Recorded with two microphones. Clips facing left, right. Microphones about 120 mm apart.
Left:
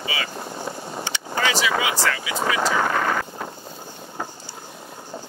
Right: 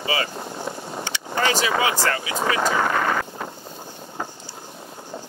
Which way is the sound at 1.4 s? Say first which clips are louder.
Right 1 dB; 45° right (ahead or behind).